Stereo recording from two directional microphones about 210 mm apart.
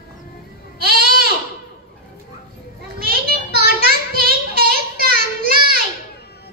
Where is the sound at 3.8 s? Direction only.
45° right (ahead or behind).